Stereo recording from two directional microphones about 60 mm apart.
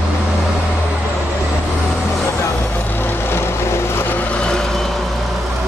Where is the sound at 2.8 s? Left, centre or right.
Left.